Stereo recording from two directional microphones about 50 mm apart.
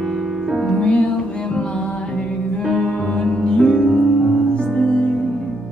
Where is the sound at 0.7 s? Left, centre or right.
Left.